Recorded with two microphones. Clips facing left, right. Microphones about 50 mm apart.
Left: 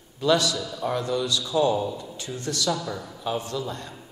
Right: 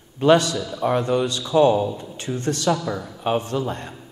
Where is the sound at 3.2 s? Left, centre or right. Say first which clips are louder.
Right 6 dB; right.